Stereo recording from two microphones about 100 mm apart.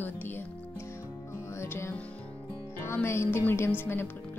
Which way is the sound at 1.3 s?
25° left (ahead or behind).